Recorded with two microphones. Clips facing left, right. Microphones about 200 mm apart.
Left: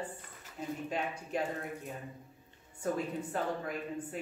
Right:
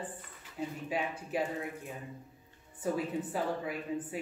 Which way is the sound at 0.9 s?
5° right (ahead or behind).